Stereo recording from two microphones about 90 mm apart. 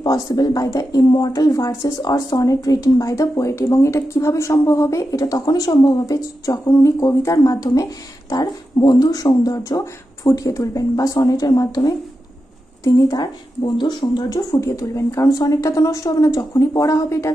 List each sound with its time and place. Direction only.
0.0 s a woman's voice: 45° left (ahead or behind)